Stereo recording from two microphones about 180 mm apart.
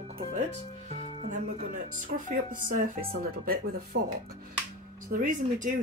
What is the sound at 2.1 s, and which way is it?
Speech, 50° right (ahead or behind).